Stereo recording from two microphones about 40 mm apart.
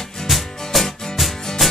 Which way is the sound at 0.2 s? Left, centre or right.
Centre.